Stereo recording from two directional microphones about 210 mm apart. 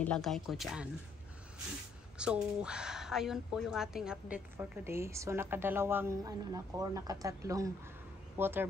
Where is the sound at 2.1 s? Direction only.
5° right (ahead or behind).